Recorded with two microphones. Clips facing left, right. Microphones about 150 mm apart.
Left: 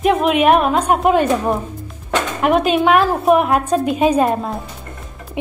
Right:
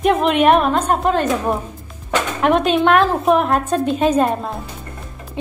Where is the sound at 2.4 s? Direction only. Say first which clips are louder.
Even; 5° left (ahead or behind).